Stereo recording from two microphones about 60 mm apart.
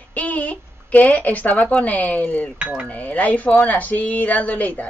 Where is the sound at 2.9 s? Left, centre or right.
Left.